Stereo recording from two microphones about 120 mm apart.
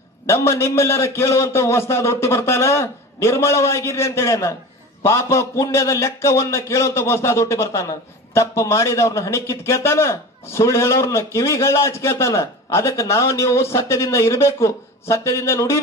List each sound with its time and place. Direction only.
0.3 s a man's voice: 25° left (ahead or behind)